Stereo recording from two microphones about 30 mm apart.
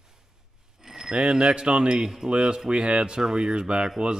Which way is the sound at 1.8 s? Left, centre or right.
Right.